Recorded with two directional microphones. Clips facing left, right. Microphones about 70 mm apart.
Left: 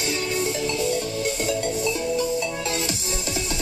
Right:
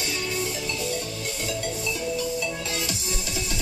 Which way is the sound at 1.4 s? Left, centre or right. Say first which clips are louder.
Left 3 dB; left.